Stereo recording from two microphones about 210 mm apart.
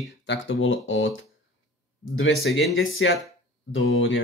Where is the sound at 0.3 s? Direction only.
65° left (ahead or behind).